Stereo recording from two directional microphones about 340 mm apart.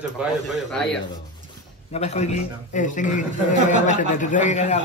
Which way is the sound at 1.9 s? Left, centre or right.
Centre.